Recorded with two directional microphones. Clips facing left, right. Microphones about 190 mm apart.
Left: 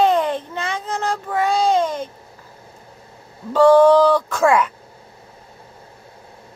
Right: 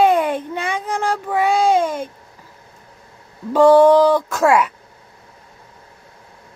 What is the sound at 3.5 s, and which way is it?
Speech, 15° right (ahead or behind).